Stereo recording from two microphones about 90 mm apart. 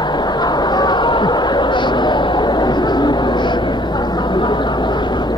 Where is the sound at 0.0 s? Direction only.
55° left (ahead or behind).